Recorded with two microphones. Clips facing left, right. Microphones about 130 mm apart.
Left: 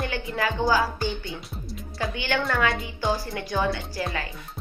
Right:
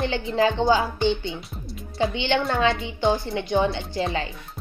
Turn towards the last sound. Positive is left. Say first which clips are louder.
# right 4 dB
turn(degrees=-25)  # may be behind; listen again after turning